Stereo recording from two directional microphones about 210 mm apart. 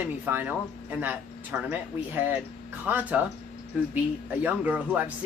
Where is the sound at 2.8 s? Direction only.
10° right (ahead or behind).